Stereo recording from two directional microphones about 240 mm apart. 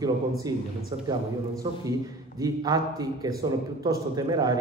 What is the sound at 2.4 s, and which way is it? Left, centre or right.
A man's voice, centre.